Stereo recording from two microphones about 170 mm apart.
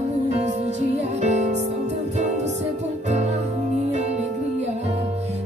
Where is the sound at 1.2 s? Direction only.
45° right (ahead or behind).